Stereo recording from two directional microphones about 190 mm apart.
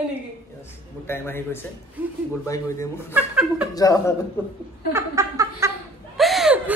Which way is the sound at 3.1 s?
5° right (ahead or behind).